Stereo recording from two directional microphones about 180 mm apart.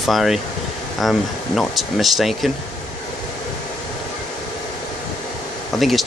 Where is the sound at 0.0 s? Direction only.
Centre (ahead or behind).